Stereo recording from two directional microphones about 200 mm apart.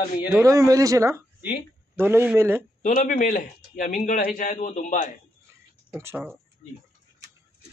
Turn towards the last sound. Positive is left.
turn(degrees=40)  # may be behind; listen again after turning